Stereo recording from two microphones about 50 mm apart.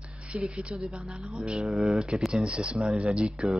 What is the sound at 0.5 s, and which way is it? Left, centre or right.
Speech, right.